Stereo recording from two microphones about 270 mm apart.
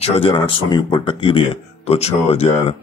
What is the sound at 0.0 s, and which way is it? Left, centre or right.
Speech, centre.